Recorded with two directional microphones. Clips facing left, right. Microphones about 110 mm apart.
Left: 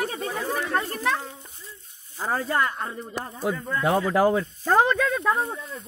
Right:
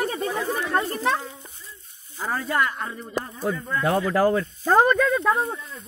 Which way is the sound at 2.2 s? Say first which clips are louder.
Even; 30° left (ahead or behind).